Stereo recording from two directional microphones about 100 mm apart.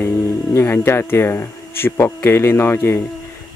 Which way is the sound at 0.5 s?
25° left (ahead or behind).